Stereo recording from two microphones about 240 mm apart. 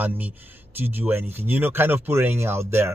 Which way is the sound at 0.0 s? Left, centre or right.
Centre.